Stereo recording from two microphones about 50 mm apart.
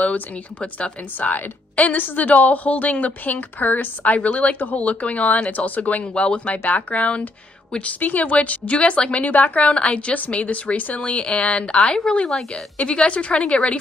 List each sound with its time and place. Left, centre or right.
0.0 s a woman's voice: left
1.3 s a woman's voice: left
12.3 s speech: centre
12.8 s a woman's voice: left